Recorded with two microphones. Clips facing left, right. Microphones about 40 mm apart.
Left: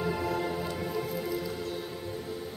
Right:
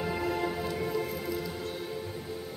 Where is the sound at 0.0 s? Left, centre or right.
Centre.